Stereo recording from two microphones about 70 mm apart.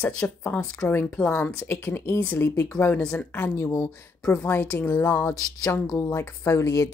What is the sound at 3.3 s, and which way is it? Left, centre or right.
Speech, left.